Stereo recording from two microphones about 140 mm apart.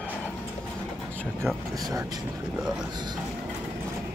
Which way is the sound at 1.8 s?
25° right (ahead or behind).